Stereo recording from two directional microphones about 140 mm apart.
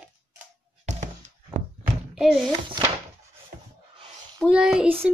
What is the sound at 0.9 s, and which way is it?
Chop, 55° right (ahead or behind).